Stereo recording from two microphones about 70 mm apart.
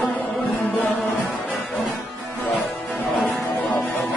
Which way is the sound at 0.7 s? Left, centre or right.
Left.